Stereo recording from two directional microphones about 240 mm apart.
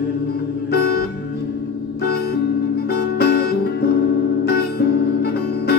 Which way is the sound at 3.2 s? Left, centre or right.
Left.